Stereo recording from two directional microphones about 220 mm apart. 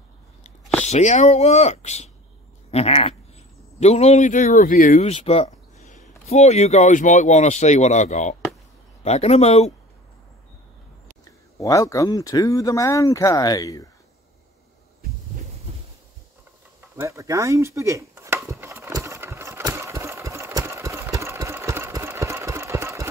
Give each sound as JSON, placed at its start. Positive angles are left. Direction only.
{"t": 0.8, "sound": "speech", "side_deg": 30}
{"t": 11.5, "sound": "speech", "side_deg": 15}
{"t": 16.9, "sound": "chopping", "side_deg": -15}